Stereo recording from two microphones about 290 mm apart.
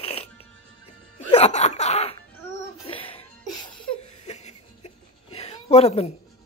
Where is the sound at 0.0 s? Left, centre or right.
Centre.